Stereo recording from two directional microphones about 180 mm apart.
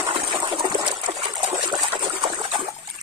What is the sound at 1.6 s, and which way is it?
Trickle, 25° right (ahead or behind).